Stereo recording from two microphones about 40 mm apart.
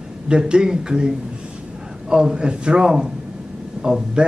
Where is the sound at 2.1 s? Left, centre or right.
Centre.